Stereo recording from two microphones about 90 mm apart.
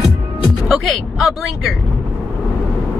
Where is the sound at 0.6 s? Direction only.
Centre (ahead or behind).